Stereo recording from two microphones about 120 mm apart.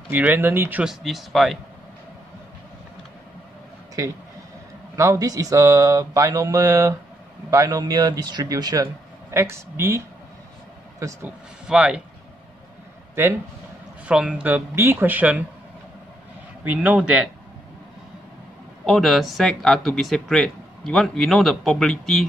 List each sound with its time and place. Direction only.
0.1 s speech: 15° right (ahead or behind)
0.8 s speech: centre (ahead or behind)
4.0 s speech: 30° right (ahead or behind)
11.2 s speech: 10° right (ahead or behind)
14.0 s speech: 10° right (ahead or behind)
16.6 s speech: 15° right (ahead or behind)
18.9 s speech: centre (ahead or behind)